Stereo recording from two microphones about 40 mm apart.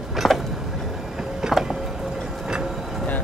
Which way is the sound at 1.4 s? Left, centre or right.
Centre.